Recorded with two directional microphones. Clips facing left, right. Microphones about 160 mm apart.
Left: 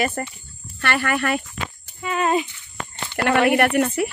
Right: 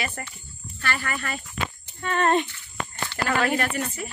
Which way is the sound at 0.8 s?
70° left (ahead or behind).